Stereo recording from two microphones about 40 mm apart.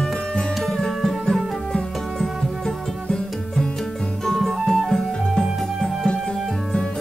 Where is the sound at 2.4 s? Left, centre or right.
Centre.